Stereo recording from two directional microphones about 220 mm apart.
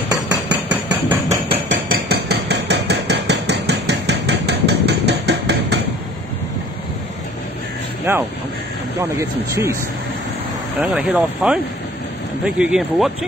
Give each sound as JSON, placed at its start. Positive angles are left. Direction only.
{"t": 0.7, "sound": "hammer", "side_deg": -10}
{"t": 1.5, "sound": "hammer", "side_deg": -40}
{"t": 9.2, "sound": "speech", "side_deg": -15}
{"t": 10.8, "sound": "speech", "side_deg": -10}